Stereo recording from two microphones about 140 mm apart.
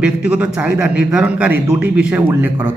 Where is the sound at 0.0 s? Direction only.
10° right (ahead or behind).